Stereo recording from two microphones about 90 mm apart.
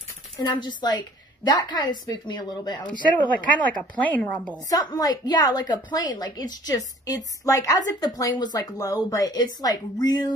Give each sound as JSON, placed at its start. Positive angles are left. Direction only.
{"t": 0.5, "sound": "a woman's voice", "side_deg": 55}
{"t": 3.2, "sound": "speech", "side_deg": 15}
{"t": 4.6, "sound": "a woman's voice", "side_deg": 45}